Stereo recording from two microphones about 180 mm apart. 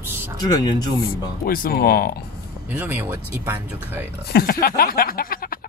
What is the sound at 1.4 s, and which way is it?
Speech, 55° left (ahead or behind).